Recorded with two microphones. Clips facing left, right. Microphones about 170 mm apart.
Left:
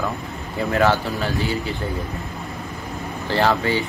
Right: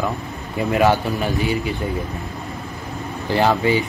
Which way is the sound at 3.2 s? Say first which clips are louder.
Right 2 dB; 15° right (ahead or behind).